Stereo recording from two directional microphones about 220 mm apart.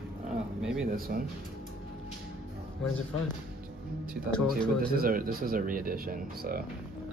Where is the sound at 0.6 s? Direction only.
5° right (ahead or behind).